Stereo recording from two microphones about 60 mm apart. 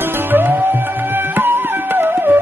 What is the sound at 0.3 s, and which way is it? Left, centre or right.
Music, right.